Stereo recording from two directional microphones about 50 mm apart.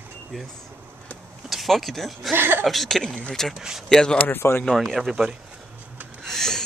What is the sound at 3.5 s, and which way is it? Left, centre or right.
Speech, centre.